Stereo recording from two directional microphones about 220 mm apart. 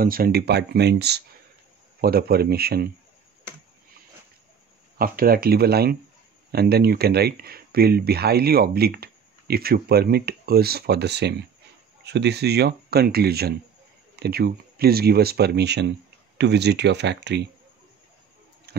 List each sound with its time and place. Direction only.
0.0 s speech: 40° right (ahead or behind)
4.9 s speech: 40° right (ahead or behind)
18.7 s a sound: 45° right (ahead or behind)